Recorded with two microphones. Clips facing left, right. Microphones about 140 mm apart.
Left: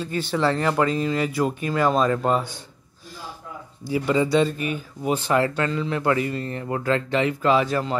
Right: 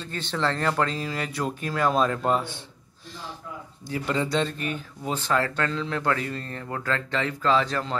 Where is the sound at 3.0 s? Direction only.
5° left (ahead or behind).